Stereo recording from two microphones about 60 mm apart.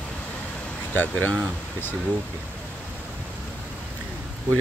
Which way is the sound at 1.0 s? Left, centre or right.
Left.